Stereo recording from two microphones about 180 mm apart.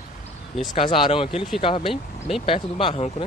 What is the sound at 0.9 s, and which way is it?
Speech, 30° left (ahead or behind).